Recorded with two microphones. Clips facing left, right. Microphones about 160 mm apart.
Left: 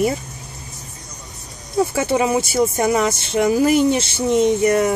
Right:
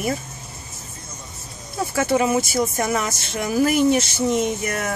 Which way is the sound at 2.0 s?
25° left (ahead or behind).